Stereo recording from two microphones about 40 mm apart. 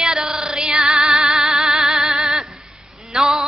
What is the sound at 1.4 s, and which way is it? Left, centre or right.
Singing, centre.